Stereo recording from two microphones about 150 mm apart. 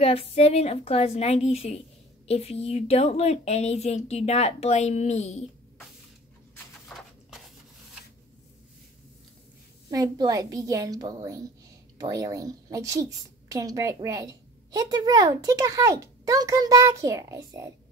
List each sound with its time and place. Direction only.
0.0 s a woman's voice: 40° left (ahead or behind)
7.2 s rub: centre (ahead or behind)
9.8 s a woman's voice: 25° right (ahead or behind)